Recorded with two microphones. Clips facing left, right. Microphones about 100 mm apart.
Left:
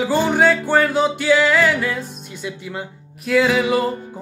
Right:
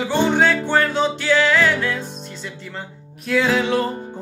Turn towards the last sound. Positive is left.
turn(degrees=5)  # may be behind; listen again after turning